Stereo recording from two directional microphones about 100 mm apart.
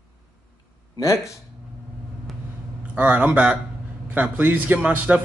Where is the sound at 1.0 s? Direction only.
30° left (ahead or behind).